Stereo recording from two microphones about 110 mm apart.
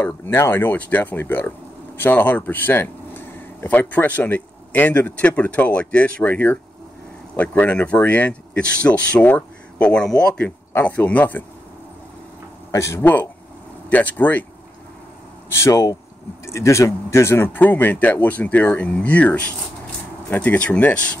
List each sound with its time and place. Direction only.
0.0 s speech: 20° left (ahead or behind)
10.7 s speech: 20° left (ahead or behind)
12.7 s speech: 25° left (ahead or behind)
13.0 s speech: 15° left (ahead or behind)
15.5 s speech: 30° left (ahead or behind); by 21.2 s 10° left (ahead or behind)